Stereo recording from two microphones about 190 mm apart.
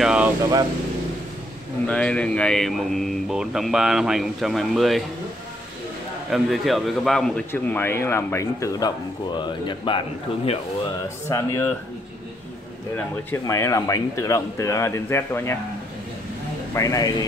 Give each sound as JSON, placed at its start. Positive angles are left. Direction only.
{"t": 0.0, "sound": "vehicle", "side_deg": -5}
{"t": 1.9, "sound": "a man's voice", "side_deg": 5}
{"t": 6.3, "sound": "a man's voice", "side_deg": 0}
{"t": 11.2, "sound": "a man's voice", "side_deg": 15}
{"t": 12.9, "sound": "a man's voice", "side_deg": 15}
{"t": 16.7, "sound": "a man's voice", "side_deg": 15}